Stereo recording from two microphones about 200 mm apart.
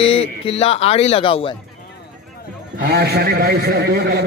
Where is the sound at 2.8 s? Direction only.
55° right (ahead or behind).